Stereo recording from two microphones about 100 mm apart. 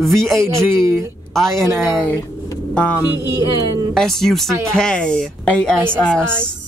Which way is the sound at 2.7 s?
15° left (ahead or behind).